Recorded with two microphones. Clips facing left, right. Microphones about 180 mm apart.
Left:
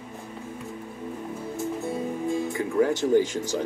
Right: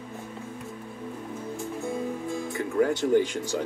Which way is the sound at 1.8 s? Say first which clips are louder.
Left 2 dB; 5° left (ahead or behind).